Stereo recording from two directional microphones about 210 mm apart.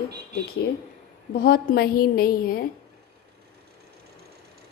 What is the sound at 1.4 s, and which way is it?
A woman's voice, 45° left (ahead or behind).